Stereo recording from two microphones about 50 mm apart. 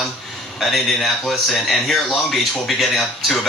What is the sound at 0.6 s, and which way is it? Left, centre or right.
A man's voice, centre.